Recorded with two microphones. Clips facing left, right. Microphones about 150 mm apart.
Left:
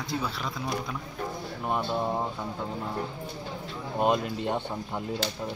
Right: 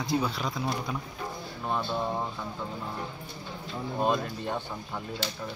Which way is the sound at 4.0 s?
20° left (ahead or behind).